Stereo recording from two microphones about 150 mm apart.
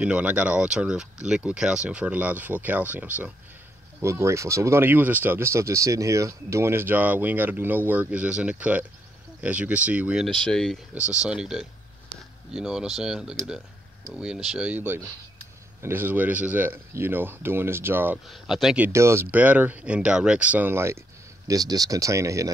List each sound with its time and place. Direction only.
0.0 s speech: 10° right (ahead or behind)
11.0 s speech: 5° right (ahead or behind)
18.3 s speech: centre (ahead or behind)
18.9 s speech: 20° right (ahead or behind)